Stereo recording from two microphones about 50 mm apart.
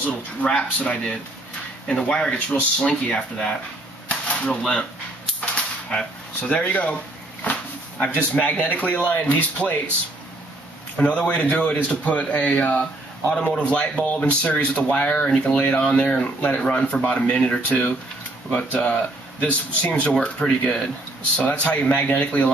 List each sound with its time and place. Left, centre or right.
0.4 s speech: centre
2.1 s speech: left
4.1 s a sound: left
6.5 s speech: left
8.0 s speech: left
11.0 s speech: left
20.4 s speech: centre
21.4 s speech: left